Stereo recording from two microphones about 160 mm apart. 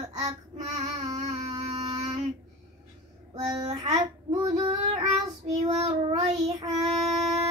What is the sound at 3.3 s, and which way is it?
Child singing, 30° right (ahead or behind).